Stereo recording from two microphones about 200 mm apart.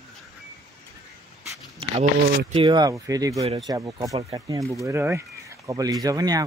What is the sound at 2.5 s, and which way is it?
Speech, 25° right (ahead or behind).